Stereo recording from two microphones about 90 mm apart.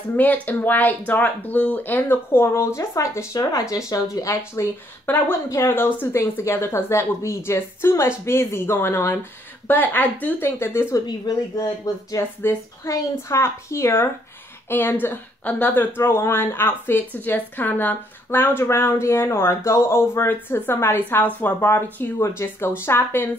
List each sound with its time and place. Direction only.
0.1 s speech: 20° left (ahead or behind); by 4.4 s 35° left (ahead or behind)
5.1 s speech: 20° left (ahead or behind)
11.1 s speech: 45° left (ahead or behind)
12.4 s speech: 30° left (ahead or behind)